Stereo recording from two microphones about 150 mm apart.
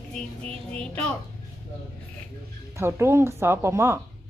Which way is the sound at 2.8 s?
15° right (ahead or behind).